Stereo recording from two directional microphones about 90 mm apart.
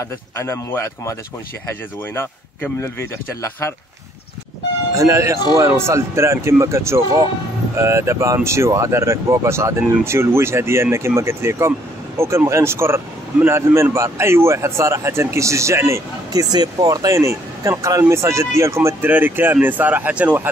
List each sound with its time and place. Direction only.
0.0 s speech: 30° left (ahead or behind)
2.1 s speech: 25° left (ahead or behind)
4.9 s speech: 35° right (ahead or behind)
16.5 s speech: 45° right (ahead or behind); by 20.4 s 20° right (ahead or behind)